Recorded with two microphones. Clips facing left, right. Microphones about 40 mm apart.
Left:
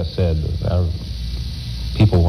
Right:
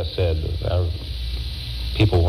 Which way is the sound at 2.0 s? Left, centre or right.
Right.